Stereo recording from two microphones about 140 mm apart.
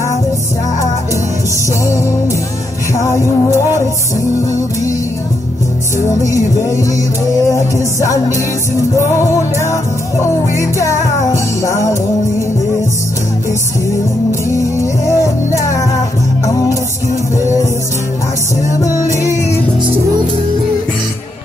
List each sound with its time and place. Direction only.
1.9 s music: 20° left (ahead or behind)
5.9 s music: 20° left (ahead or behind)
14.5 s music: 20° left (ahead or behind)
18.8 s music: 25° left (ahead or behind)